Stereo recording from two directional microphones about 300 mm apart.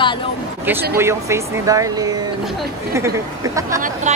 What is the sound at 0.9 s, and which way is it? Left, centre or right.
A woman's voice, centre.